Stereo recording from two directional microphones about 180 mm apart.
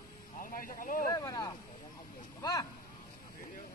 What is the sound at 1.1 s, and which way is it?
Speech, 20° left (ahead or behind).